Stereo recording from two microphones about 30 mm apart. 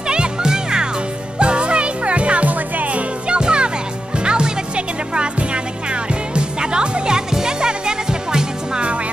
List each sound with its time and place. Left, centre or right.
0.1 s music: right
1.4 s music: right
2.5 s music: right
3.3 s music: right